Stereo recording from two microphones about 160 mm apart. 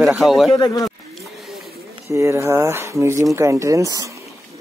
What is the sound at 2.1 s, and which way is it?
Speech, 20° right (ahead or behind).